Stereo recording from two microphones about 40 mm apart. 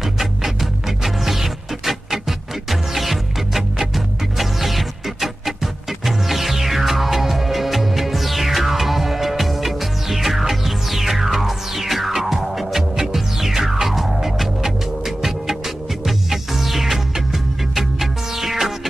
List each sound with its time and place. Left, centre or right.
0.0 s music: centre